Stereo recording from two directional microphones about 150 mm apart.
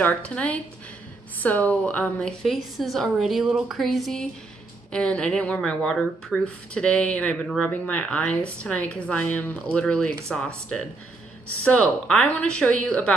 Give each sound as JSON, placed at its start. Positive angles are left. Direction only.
{"t": 0.0, "sound": "speech", "side_deg": 10}
{"t": 1.7, "sound": "a woman's voice", "side_deg": 10}
{"t": 11.6, "sound": "speech", "side_deg": 10}